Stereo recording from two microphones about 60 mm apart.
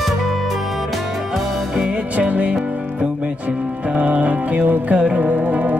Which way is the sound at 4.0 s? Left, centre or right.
Right.